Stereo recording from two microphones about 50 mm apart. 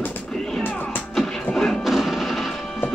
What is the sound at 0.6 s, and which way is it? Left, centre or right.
Music, left.